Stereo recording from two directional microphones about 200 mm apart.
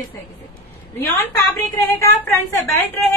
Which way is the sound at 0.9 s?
15° left (ahead or behind).